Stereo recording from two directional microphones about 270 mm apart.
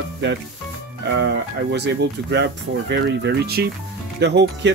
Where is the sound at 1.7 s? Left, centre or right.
Right.